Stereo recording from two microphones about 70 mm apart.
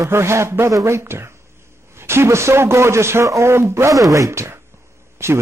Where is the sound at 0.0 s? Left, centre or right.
Right.